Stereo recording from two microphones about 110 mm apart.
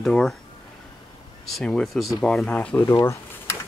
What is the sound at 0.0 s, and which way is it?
Speech, 5° left (ahead or behind).